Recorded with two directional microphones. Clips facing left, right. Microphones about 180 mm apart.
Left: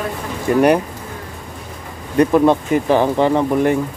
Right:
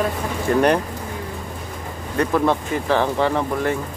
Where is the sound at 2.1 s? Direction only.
15° left (ahead or behind).